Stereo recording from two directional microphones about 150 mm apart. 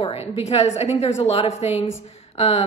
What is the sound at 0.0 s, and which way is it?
A woman's voice, 45° left (ahead or behind).